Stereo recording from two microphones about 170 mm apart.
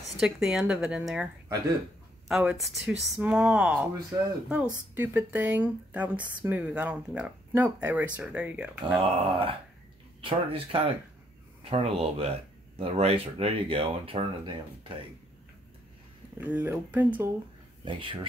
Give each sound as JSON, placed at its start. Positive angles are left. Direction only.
{"t": 0.2, "sound": "speech", "side_deg": -5}
{"t": 9.0, "sound": "speech", "side_deg": -35}
{"t": 16.3, "sound": "speech", "side_deg": -10}
{"t": 17.8, "sound": "speech", "side_deg": -30}